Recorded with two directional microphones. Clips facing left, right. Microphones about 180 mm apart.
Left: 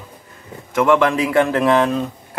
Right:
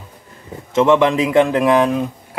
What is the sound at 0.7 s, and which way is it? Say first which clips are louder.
A man's voice: right 2 dB; 20° right (ahead or behind).